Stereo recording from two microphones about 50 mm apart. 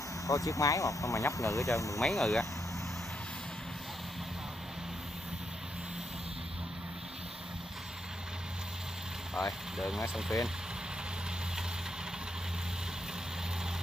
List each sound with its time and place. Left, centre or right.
0.3 s speech: left
2.0 s speech: centre
9.8 s speech: centre